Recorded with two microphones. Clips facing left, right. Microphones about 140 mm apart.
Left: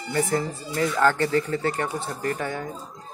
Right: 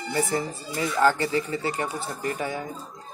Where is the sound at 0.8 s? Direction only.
5° right (ahead or behind).